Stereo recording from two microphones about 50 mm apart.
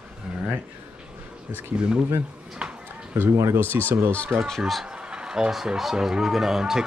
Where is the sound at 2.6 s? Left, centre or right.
Centre.